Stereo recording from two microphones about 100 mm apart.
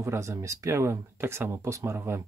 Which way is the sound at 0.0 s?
30° right (ahead or behind).